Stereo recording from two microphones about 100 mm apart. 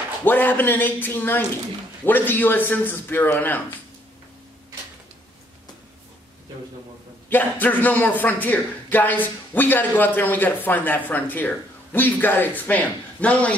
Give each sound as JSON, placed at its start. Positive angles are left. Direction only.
{"t": 0.2, "sound": "a man's voice", "side_deg": 20}
{"t": 7.2, "sound": "speech", "side_deg": 20}